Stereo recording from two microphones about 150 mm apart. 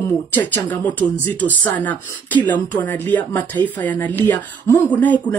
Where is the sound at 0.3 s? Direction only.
10° left (ahead or behind).